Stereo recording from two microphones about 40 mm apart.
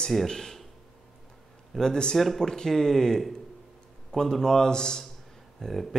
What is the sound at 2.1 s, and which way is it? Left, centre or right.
Speech, centre.